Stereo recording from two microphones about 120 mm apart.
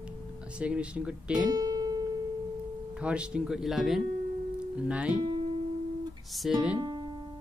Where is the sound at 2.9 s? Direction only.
10° right (ahead or behind).